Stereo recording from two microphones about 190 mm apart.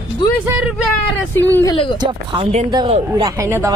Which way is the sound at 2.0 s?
25° right (ahead or behind).